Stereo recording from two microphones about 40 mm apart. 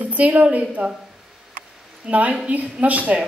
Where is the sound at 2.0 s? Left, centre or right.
Right.